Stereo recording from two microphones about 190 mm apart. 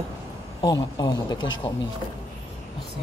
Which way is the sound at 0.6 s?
20° left (ahead or behind).